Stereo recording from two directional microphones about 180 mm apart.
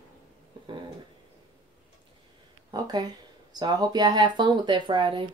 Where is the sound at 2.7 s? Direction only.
20° right (ahead or behind).